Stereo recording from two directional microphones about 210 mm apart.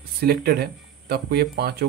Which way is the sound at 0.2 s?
50° right (ahead or behind).